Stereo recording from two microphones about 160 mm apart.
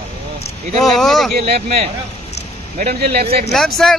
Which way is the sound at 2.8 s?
80° right.